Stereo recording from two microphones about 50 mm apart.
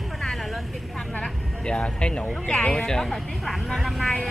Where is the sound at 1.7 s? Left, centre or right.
Left.